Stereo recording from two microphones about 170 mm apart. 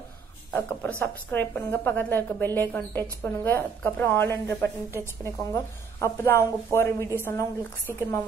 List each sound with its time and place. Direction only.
0.5 s a woman's voice: 10° left (ahead or behind)